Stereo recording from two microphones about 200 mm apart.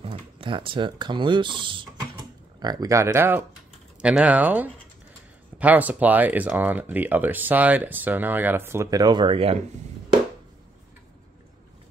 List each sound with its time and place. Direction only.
0.0 s speech: 25° right (ahead or behind)